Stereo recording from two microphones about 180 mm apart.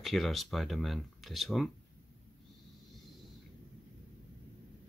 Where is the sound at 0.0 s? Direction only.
Centre (ahead or behind).